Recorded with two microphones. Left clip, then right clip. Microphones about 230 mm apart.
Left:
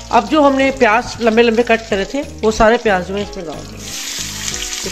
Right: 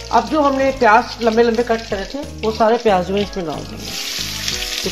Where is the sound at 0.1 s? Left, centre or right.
Left.